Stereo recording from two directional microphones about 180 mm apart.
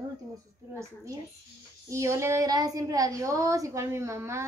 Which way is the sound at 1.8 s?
15° right (ahead or behind).